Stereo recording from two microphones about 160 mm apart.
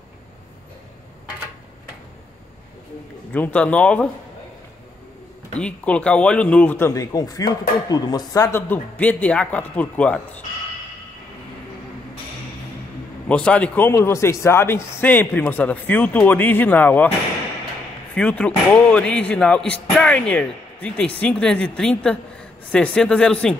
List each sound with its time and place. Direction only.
3.3 s a man's voice: 10° left (ahead or behind)
5.6 s a man's voice: 5° left (ahead or behind)
6.9 s a man's voice: 20° left (ahead or behind)
13.3 s a man's voice: 5° left (ahead or behind)
18.1 s a man's voice: 10° left (ahead or behind)